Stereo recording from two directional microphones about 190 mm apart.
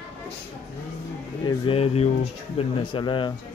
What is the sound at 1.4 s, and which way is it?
Speech, 25° left (ahead or behind).